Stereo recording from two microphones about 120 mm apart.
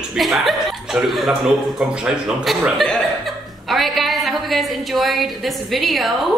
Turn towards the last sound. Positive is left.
turn(degrees=0)  # may be behind; listen again after turning